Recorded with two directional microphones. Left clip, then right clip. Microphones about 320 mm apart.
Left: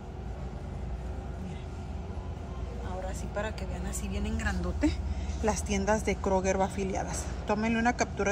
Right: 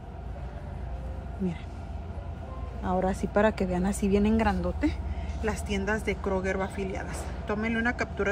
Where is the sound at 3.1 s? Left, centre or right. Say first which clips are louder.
Right 10 dB; centre.